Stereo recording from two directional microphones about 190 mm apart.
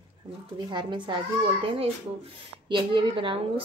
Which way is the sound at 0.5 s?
25° right (ahead or behind).